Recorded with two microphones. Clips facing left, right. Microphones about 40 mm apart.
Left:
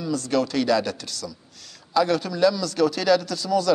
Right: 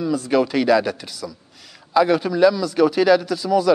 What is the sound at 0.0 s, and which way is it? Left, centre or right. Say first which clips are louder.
A man's voice: right 5 dB; centre.